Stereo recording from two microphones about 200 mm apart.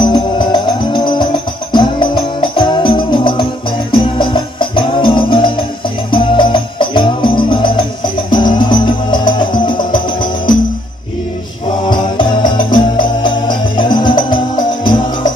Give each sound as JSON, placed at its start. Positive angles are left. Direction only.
{"t": 0.0, "sound": "music", "side_deg": 20}
{"t": 11.9, "sound": "music", "side_deg": 25}